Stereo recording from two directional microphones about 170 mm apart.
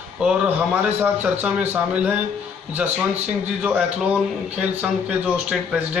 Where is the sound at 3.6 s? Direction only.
5° right (ahead or behind).